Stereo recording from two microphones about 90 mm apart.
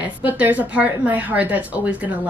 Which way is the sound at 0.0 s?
20° right (ahead or behind).